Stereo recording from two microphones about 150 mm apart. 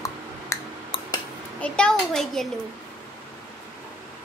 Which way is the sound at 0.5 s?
20° left (ahead or behind).